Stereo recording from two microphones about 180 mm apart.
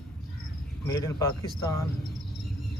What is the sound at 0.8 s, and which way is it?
Cricket, 20° left (ahead or behind).